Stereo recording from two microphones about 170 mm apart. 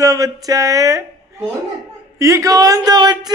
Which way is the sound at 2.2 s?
20° right (ahead or behind).